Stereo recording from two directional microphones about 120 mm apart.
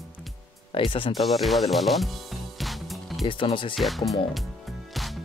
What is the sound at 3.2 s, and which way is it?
Speech, 45° left (ahead or behind).